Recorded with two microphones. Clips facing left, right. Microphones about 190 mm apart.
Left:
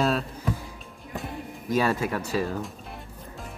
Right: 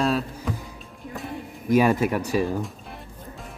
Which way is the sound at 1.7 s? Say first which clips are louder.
Right 5 dB; 15° right (ahead or behind).